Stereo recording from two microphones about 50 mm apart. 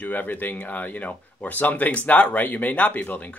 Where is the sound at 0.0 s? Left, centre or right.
Left.